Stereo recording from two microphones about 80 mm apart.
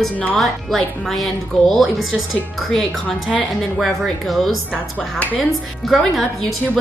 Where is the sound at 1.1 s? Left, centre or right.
Centre.